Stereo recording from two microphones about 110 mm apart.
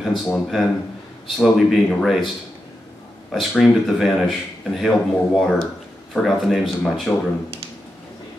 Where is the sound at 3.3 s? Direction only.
Centre (ahead or behind).